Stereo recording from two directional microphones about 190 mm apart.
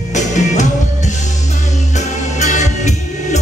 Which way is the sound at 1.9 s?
40° left (ahead or behind).